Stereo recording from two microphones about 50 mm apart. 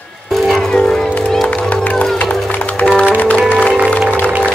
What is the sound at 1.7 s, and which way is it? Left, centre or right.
Music, left.